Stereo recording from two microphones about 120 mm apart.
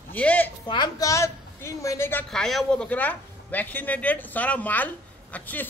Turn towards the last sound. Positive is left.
turn(degrees=15)  # may be behind; listen again after turning